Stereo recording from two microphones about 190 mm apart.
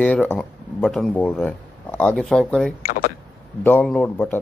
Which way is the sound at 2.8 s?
50° left (ahead or behind).